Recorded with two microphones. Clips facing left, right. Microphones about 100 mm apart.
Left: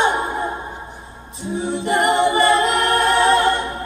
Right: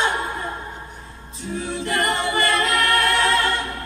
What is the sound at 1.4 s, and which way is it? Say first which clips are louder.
A capella: left 4 dB; 20° left (ahead or behind).